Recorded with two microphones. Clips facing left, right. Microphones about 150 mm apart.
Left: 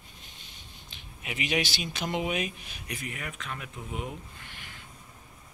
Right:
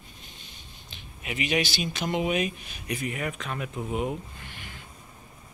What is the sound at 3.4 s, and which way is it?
Speech, 40° right (ahead or behind).